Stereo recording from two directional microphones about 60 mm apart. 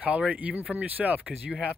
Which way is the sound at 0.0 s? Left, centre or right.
Right.